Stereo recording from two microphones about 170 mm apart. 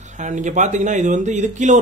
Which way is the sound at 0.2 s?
45° right (ahead or behind).